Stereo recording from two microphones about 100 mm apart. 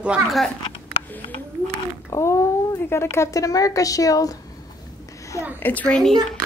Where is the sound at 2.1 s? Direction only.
30° left (ahead or behind).